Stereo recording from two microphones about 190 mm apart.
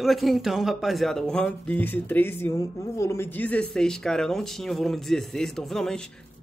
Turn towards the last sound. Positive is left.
turn(degrees=5)  # may be behind; listen again after turning